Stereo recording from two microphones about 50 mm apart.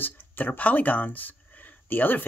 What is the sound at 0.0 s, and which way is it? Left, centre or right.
Speech, left.